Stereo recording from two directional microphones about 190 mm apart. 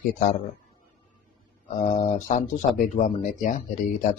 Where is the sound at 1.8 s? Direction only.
40° left (ahead or behind).